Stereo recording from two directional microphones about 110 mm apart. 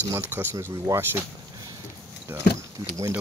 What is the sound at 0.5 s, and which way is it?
Speech, 30° right (ahead or behind).